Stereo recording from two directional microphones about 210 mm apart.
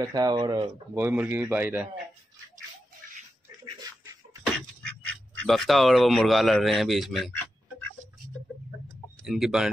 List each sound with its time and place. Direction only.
0.0 s speech: 20° right (ahead or behind)
0.9 s speech: 10° right (ahead or behind)
3.8 s a sound: 15° right (ahead or behind)
5.4 s a man's voice: centre (ahead or behind)
9.2 s speech: centre (ahead or behind)